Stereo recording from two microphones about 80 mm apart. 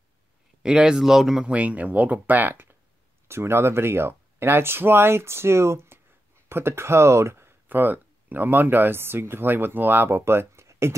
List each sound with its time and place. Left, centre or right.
0.6 s speech: centre
1.5 s speech: centre; by 11.0 s right